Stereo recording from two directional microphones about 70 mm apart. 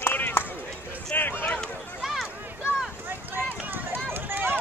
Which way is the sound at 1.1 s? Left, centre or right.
Left.